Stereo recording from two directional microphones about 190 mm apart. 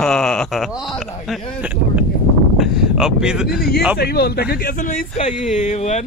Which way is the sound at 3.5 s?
55° left (ahead or behind).